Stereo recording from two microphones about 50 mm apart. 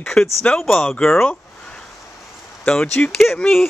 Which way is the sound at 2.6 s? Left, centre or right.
Left.